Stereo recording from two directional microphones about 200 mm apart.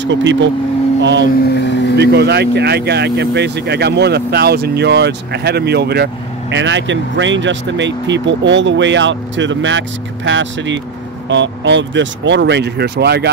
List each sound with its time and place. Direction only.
0.0 s speech: 65° right (ahead or behind)
1.5 s speech: 60° left (ahead or behind)
2.0 s speech: 55° right (ahead or behind)